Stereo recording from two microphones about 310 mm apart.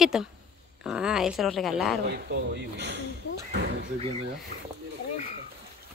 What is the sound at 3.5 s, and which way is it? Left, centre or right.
Slam, right.